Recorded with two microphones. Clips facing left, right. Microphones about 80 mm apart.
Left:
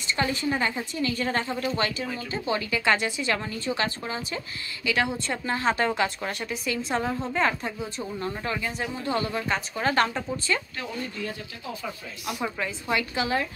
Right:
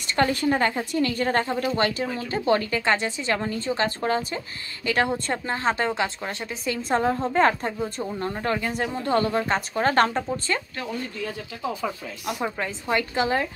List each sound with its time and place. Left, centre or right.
0.0 s a woman's voice: right
2.8 s a woman's voice: right
4.1 s a woman's voice: right
12.4 s speech: right